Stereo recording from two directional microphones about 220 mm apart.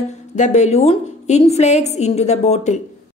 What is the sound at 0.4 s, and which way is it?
A woman's voice, 30° left (ahead or behind).